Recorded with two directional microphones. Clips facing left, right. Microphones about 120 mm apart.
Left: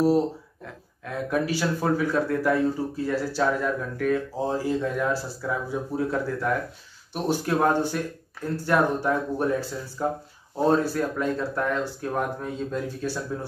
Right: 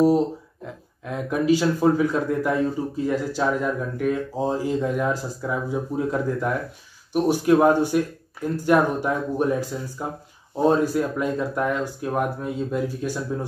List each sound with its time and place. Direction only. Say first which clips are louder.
1.3 s a man's voice: right 6 dB; 15° right (ahead or behind)